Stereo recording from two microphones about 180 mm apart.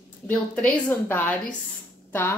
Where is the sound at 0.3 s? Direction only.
10° left (ahead or behind).